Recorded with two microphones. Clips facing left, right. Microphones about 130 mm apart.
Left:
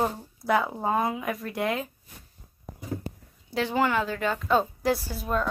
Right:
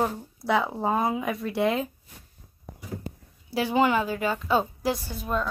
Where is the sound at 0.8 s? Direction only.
25° right (ahead or behind).